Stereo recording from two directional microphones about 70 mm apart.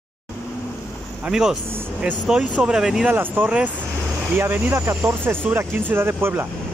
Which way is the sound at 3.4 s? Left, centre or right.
Centre.